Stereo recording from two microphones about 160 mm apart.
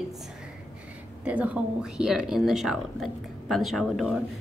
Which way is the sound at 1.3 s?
10° right (ahead or behind).